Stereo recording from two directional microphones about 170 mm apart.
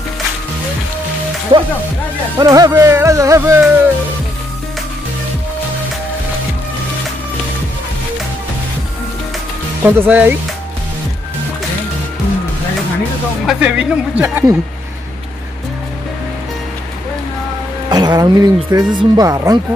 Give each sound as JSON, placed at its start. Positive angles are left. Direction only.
{"t": 1.5, "sound": "speech", "side_deg": -30}
{"t": 2.3, "sound": "music", "side_deg": -20}
{"t": 9.8, "sound": "music", "side_deg": -10}
{"t": 13.5, "sound": "music", "side_deg": -10}
{"t": 17.8, "sound": "speech", "side_deg": -25}